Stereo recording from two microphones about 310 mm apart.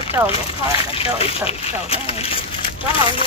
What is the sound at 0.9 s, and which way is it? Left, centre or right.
Speech, centre.